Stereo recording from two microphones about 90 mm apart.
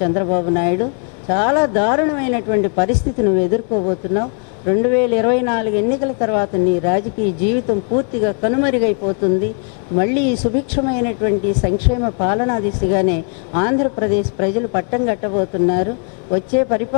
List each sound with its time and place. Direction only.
0.0 s speech: 20° left (ahead or behind)